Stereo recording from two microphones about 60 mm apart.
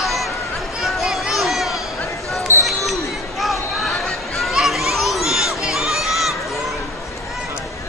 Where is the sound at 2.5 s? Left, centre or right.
Right.